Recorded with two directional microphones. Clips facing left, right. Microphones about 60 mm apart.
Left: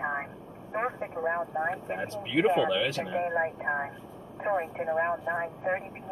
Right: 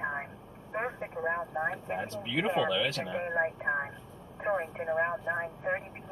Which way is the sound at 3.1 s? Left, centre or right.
Centre.